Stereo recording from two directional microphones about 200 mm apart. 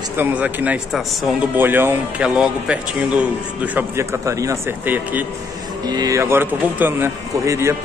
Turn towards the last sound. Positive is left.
turn(degrees=-15)  # may be behind; listen again after turning